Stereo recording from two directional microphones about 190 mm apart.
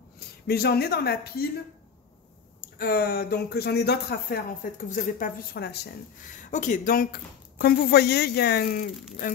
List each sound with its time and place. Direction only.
0.5 s speech: 55° left (ahead or behind)
2.8 s speech: 55° left (ahead or behind)
6.5 s speech: 40° left (ahead or behind)